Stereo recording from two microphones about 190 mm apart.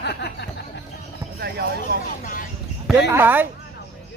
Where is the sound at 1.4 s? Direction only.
55° right (ahead or behind).